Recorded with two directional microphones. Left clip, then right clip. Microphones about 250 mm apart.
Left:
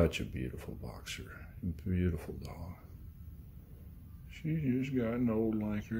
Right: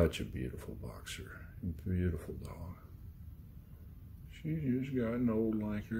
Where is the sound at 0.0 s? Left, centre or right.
Centre.